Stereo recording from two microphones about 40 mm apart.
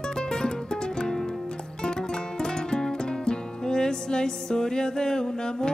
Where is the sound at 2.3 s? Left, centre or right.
Centre.